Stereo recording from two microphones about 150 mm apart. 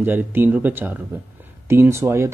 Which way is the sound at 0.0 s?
15° right (ahead or behind).